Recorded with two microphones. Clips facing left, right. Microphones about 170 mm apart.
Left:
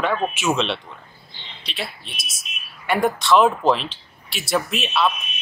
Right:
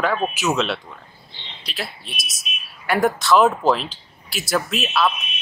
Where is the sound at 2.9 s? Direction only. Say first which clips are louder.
Right 1 dB; centre (ahead or behind).